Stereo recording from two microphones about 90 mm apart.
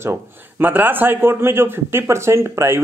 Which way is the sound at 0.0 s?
25° right (ahead or behind).